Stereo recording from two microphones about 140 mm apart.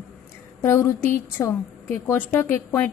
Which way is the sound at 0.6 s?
20° left (ahead or behind).